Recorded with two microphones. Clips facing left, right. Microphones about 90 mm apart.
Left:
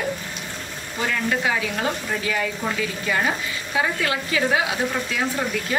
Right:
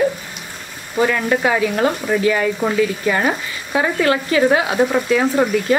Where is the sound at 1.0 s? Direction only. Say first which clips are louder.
Right 7 dB; 50° right (ahead or behind).